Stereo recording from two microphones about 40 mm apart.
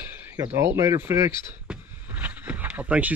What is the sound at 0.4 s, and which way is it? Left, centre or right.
Speech, right.